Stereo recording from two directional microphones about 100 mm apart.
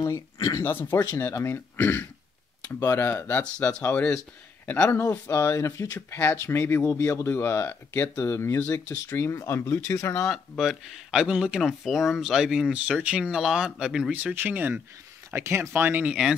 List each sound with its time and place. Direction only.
0.0 s speech: 35° left (ahead or behind)
0.7 s speech: 20° left (ahead or behind)
4.6 s speech: 10° left (ahead or behind)
5.3 s speech: 30° left (ahead or behind)
5.9 s speech: 20° left (ahead or behind)
10.6 s speech: 5° right (ahead or behind)
14.1 s speech: 15° right (ahead or behind)